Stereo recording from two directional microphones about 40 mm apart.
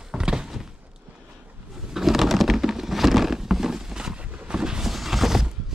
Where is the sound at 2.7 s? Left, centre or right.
Centre.